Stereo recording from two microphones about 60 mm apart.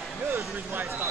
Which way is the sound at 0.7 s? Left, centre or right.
Right.